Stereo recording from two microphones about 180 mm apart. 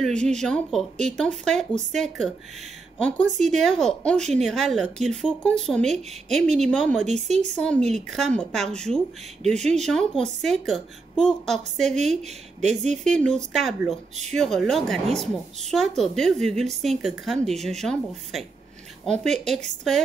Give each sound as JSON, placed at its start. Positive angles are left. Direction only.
{"t": 0.0, "sound": "a woman's voice", "side_deg": 5}
{"t": 7.1, "sound": "speech", "side_deg": -40}
{"t": 7.5, "sound": "a woman's voice", "side_deg": 5}
{"t": 12.6, "sound": "speech", "side_deg": -40}
{"t": 13.0, "sound": "a woman's voice", "side_deg": 5}
{"t": 16.0, "sound": "a woman's voice", "side_deg": 0}